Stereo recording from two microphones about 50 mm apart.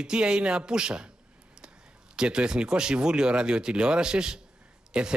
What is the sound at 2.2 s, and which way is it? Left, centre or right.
Speech, centre.